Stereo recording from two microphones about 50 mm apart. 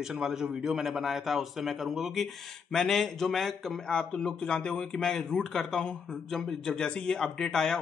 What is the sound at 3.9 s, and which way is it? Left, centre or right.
Speech, centre.